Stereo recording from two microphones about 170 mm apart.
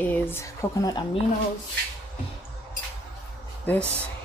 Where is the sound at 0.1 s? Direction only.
15° left (ahead or behind).